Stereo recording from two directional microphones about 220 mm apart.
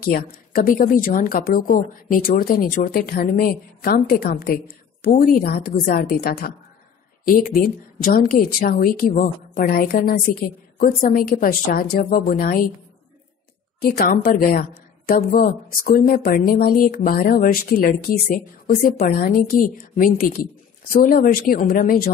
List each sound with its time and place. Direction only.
0.0 s a woman's voice: 40° left (ahead or behind)
8.0 s a woman's voice: 40° left (ahead or behind)
13.8 s a woman's voice: 45° left (ahead or behind)